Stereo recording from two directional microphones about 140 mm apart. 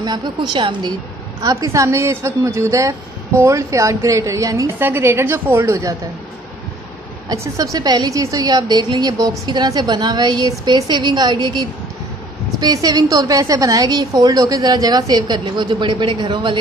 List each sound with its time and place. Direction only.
0.0 s a woman's voice: 30° right (ahead or behind)
7.2 s a woman's voice: 25° right (ahead or behind)